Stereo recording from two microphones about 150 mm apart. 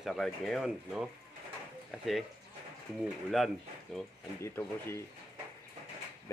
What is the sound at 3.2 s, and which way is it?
Speech, centre (ahead or behind).